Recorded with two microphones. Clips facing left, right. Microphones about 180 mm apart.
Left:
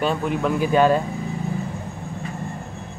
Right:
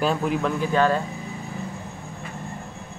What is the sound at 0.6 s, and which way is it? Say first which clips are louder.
Speech: left 5 dB; 15° left (ahead or behind).